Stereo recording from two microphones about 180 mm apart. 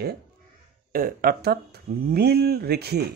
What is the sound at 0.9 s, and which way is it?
Speech, 50° right (ahead or behind).